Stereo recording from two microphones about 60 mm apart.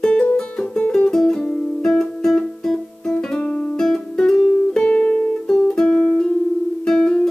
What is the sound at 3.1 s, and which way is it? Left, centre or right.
Guitar, centre.